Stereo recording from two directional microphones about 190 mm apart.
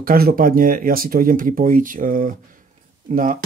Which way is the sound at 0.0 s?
50° right (ahead or behind).